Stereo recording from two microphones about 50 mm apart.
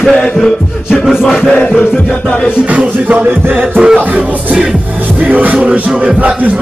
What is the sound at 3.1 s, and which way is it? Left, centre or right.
Music, right.